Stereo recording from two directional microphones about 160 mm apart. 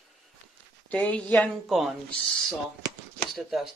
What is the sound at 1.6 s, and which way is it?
Speech, centre (ahead or behind).